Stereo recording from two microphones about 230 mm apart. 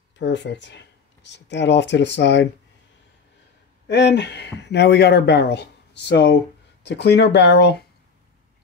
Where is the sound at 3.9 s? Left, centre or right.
Left.